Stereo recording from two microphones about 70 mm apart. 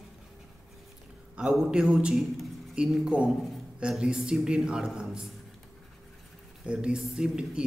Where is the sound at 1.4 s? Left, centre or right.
Centre.